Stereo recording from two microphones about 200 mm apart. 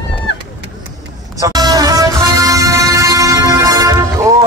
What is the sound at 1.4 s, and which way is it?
Music, 20° right (ahead or behind).